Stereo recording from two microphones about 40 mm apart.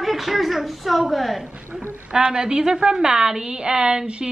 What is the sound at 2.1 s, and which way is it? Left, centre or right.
A woman's voice, right.